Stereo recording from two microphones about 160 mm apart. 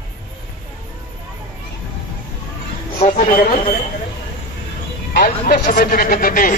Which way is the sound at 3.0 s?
35° left (ahead or behind).